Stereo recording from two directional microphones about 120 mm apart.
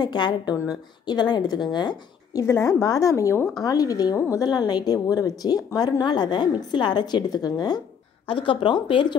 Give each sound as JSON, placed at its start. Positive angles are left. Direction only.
{"t": 0.0, "sound": "a woman's voice", "side_deg": 35}
{"t": 2.4, "sound": "a woman's voice", "side_deg": 25}
{"t": 8.3, "sound": "speech", "side_deg": 45}